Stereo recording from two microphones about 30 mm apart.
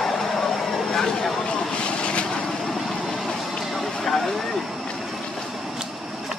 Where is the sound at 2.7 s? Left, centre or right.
Centre.